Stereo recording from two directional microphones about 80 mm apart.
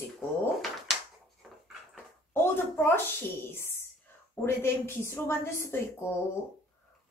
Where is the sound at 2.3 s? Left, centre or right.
Left.